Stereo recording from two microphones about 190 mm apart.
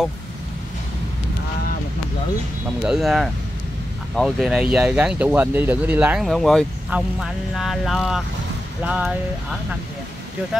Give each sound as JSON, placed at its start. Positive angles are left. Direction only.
{"t": 2.8, "sound": "speech", "side_deg": 0}